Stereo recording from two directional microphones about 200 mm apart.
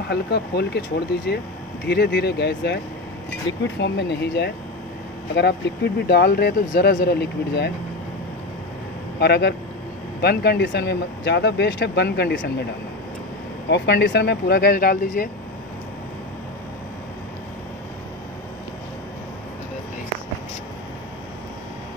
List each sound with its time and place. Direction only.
0.1 s speech: 55° left (ahead or behind)
6.0 s speech: 55° left (ahead or behind)
9.2 s speech: 55° left (ahead or behind)
13.7 s speech: 60° left (ahead or behind)